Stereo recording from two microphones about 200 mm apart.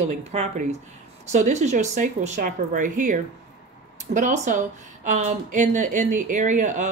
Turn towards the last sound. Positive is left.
turn(degrees=-40)  # may be behind; listen again after turning